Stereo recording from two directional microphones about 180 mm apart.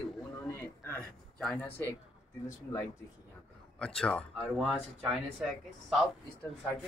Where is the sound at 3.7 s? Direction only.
5° left (ahead or behind).